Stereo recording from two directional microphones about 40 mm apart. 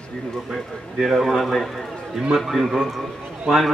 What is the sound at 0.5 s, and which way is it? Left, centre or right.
A man's voice, centre.